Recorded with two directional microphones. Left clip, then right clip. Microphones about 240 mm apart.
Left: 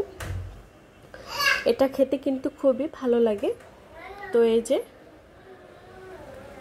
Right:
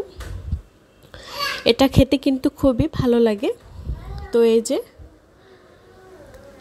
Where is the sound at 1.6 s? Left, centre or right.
Right.